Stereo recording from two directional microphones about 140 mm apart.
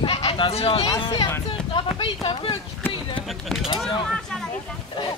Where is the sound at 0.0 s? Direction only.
40° left (ahead or behind).